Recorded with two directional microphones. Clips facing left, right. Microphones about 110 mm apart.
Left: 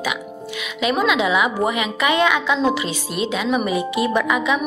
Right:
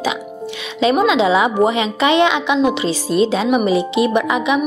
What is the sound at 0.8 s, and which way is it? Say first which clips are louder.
A woman's voice: right 5 dB; 30° right (ahead or behind).